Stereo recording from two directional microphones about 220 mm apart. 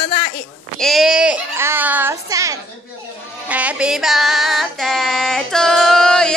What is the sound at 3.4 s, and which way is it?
Female singing, 5° right (ahead or behind).